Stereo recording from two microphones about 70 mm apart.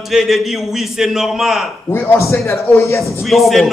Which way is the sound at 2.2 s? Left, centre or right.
Left.